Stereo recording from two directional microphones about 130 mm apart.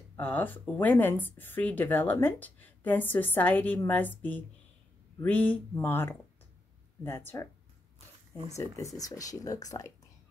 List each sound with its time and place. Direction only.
0.2 s speech: 15° left (ahead or behind)
8.5 s speech: 25° left (ahead or behind)